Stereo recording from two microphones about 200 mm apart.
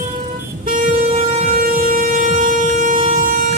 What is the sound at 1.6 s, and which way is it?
Music, 45° right (ahead or behind).